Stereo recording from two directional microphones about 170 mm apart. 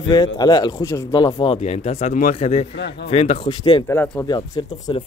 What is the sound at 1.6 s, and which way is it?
Speech, 40° left (ahead or behind).